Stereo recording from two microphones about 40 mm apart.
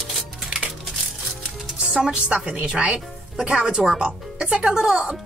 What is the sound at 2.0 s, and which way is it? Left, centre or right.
Speech, right.